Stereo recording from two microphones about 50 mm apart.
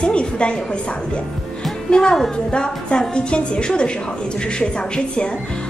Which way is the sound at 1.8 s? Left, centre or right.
Centre.